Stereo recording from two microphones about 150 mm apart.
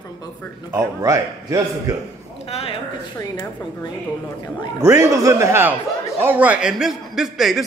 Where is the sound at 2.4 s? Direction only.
40° left (ahead or behind).